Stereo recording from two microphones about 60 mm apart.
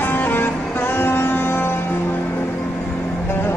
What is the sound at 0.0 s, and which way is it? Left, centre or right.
Music, left.